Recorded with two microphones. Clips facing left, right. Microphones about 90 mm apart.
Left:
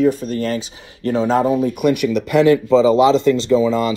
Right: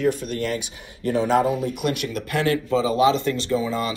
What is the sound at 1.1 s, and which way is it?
Speech, 35° left (ahead or behind).